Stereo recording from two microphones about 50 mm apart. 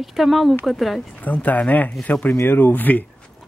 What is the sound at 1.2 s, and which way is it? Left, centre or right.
Speech, left.